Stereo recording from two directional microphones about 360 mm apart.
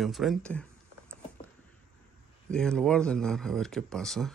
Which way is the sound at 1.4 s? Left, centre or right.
Centre.